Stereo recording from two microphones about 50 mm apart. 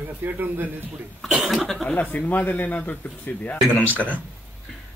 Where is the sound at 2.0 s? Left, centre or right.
Left.